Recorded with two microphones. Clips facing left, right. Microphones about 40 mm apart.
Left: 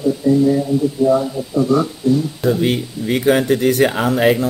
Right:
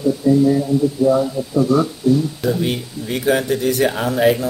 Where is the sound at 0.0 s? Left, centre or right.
Centre.